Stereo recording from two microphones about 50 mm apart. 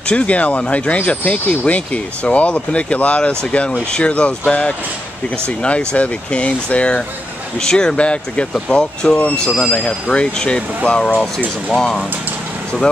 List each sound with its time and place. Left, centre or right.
0.1 s speech: left
7.6 s speech: centre
11.1 s speech: centre